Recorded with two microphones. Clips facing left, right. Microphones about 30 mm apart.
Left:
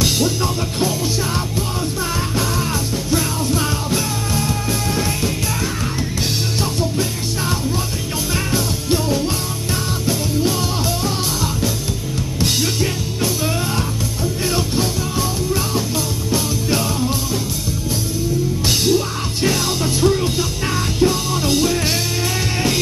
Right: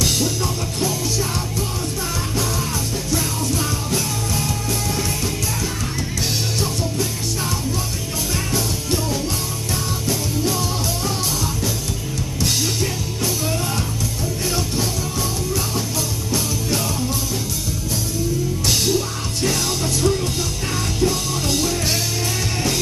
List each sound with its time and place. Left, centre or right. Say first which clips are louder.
0.0 s music: left 3 dB; left
3.2 s music: left 3 dB; centre
6.6 s music: left 3 dB; centre
12.4 s music: left 2 dB; centre
14.4 s music: left 3 dB; centre
18.7 s music: left 3 dB; centre